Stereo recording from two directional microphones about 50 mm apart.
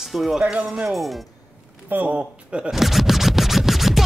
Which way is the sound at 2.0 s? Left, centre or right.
Right.